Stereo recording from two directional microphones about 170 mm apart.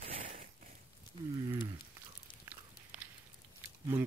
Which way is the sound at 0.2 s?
45° right (ahead or behind).